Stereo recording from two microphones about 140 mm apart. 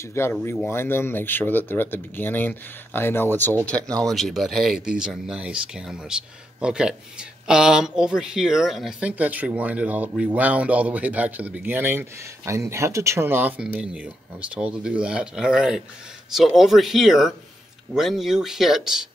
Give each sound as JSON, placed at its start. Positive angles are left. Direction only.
{"t": 0.0, "sound": "speech", "side_deg": 20}